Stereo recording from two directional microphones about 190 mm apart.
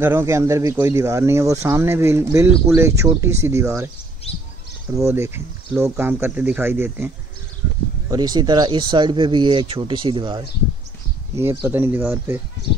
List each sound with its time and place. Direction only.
0.0 s speech: 15° right (ahead or behind)
5.0 s speech: 15° right (ahead or behind)
8.1 s speech: 20° right (ahead or behind)
11.3 s speech: 10° right (ahead or behind)